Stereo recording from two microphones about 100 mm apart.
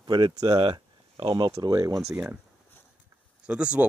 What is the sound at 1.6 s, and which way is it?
Speech, 40° right (ahead or behind).